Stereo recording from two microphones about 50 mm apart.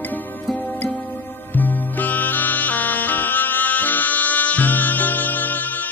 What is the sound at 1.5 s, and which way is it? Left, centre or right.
Music, left.